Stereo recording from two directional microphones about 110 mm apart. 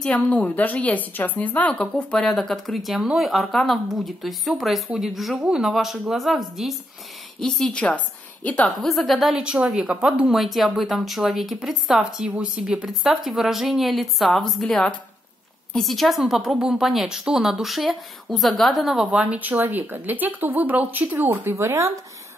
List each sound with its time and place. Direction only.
0.0 s a woman's voice: 10° left (ahead or behind)
8.8 s a woman's voice: centre (ahead or behind)
19.0 s speech: 15° right (ahead or behind)